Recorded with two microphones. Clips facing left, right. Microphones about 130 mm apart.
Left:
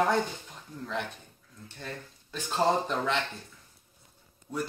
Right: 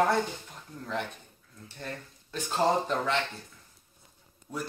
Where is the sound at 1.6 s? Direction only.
5° right (ahead or behind).